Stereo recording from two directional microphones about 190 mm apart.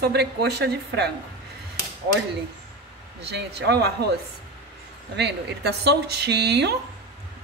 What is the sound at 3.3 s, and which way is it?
Speech, 60° right (ahead or behind).